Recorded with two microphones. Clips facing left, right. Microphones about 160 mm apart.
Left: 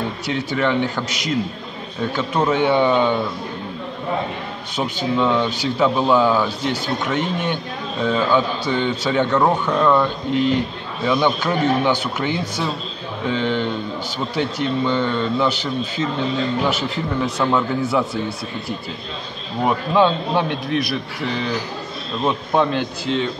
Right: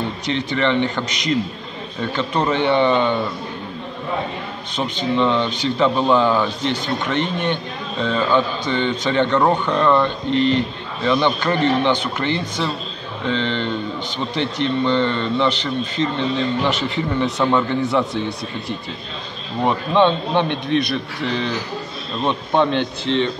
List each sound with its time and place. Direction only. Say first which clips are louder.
0.3 s a man's voice: right 1 dB; 5° left (ahead or behind)
4.7 s a man's voice: right 1 dB; 5° left (ahead or behind)
19.6 s speech: right 1 dB; 5° left (ahead or behind)